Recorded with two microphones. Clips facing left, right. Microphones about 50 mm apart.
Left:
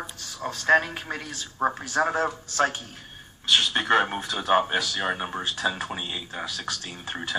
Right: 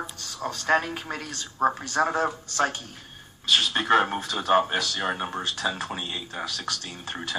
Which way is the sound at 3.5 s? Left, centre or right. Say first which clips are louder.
Even; centre.